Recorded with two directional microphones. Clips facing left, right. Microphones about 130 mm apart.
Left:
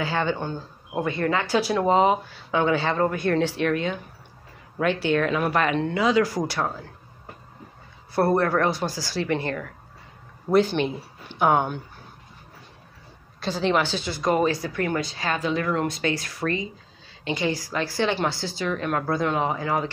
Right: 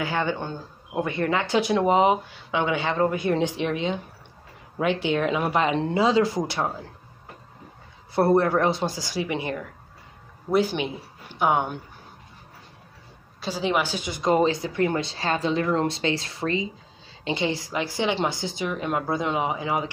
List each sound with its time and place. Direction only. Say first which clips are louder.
0.9 s a woman's voice: even; 20° right (ahead or behind)
8.1 s a woman's voice: right 1 dB; 20° right (ahead or behind); by 11.7 s centre (ahead or behind)
13.4 s a woman's voice: left 2 dB; 5° right (ahead or behind)